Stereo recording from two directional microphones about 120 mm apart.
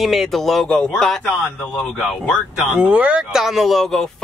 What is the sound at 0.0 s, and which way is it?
Speech, centre (ahead or behind).